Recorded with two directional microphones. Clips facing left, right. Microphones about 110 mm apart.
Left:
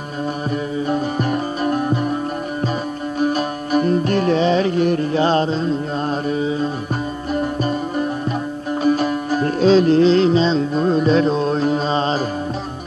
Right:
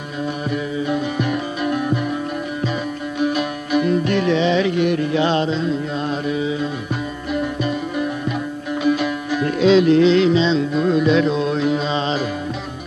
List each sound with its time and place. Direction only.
0.7 s music: 40° left (ahead or behind)
3.2 s music: 40° left (ahead or behind)
6.0 s carnatic music: 40° left (ahead or behind)
7.3 s music: 40° left (ahead or behind)